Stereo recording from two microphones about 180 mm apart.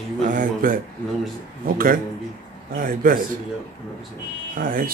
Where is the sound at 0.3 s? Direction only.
50° right (ahead or behind).